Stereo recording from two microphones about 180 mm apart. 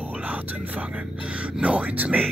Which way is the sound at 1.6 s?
5° right (ahead or behind).